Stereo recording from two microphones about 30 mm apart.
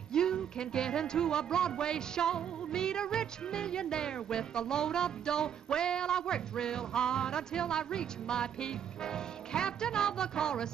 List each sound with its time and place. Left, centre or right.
0.1 s music: left